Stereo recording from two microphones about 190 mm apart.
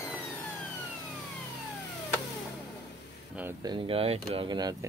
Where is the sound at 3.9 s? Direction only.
30° right (ahead or behind).